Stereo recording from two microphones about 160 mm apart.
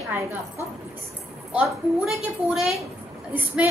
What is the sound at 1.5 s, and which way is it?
A woman's voice, centre (ahead or behind).